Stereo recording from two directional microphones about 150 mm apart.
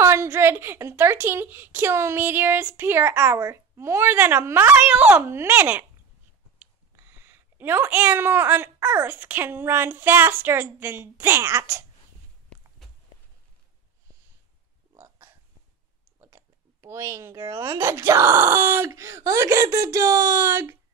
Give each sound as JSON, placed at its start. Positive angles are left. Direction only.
{"t": 0.0, "sound": "a woman's voice", "side_deg": -20}
{"t": 7.0, "sound": "a woman's voice", "side_deg": -15}
{"t": 12.4, "sound": "walk", "side_deg": 0}
{"t": 16.2, "sound": "speech", "side_deg": -20}